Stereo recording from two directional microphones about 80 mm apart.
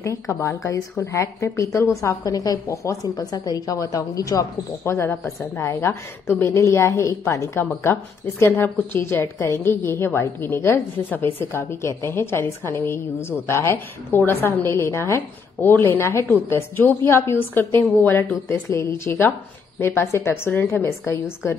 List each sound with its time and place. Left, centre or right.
0.0 s a woman's voice: left
4.8 s a woman's voice: left